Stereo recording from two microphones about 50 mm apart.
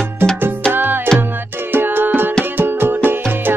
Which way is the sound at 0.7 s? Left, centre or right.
Right.